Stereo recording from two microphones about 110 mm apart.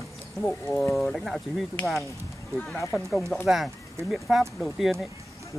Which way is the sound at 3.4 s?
5° right (ahead or behind).